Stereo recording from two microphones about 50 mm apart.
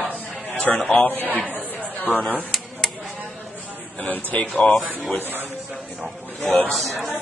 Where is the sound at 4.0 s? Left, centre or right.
Left.